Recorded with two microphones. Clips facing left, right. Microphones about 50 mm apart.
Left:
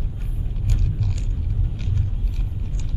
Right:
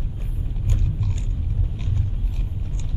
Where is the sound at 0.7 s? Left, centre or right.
Right.